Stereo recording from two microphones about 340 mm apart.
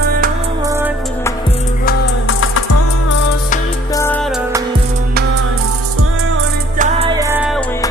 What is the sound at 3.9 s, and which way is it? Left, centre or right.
Music, centre.